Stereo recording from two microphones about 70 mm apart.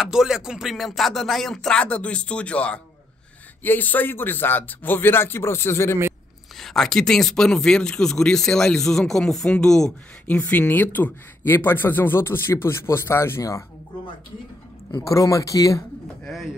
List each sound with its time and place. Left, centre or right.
0.0 s speech: centre; by 5.9 s left
6.5 s speech: centre
10.2 s speech: centre; by 13.7 s left
15.0 s speech: left